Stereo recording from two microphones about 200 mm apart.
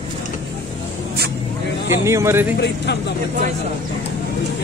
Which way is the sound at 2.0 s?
15° right (ahead or behind).